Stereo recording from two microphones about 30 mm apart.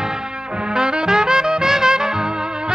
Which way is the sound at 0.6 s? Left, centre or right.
Right.